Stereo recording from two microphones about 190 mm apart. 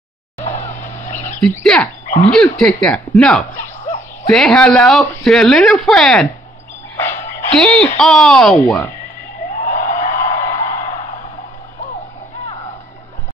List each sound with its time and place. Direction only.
0.4 s vehicle: 40° left (ahead or behind)
1.4 s speech: 5° left (ahead or behind)
2.0 s dog: 40° left (ahead or behind)
2.3 s speech: 5° left (ahead or behind)
3.8 s a sound: 40° left (ahead or behind)
4.3 s speech: 5° left (ahead or behind)
7.0 s dog: 10° left (ahead or behind)
8.0 s speech: centre (ahead or behind)
9.6 s a sound: 40° left (ahead or behind)